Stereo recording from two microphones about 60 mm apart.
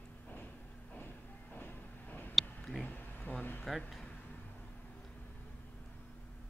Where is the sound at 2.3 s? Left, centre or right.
Centre.